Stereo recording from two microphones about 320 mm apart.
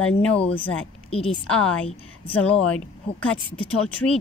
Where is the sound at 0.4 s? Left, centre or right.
Centre.